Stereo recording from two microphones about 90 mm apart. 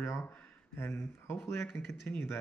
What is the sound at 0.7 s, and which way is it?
Speech, 25° left (ahead or behind).